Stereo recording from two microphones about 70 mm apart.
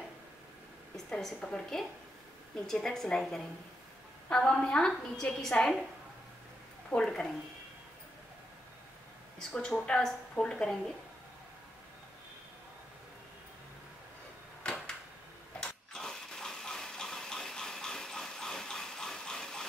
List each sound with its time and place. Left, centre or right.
0.9 s a woman's voice: centre
6.9 s a woman's voice: centre
9.4 s a woman's voice: centre
14.6 s a sound: centre